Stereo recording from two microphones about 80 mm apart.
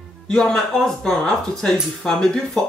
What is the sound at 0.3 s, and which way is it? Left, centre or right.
Speech, centre.